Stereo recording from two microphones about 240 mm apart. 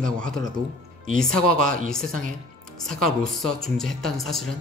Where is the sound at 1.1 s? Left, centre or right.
Centre.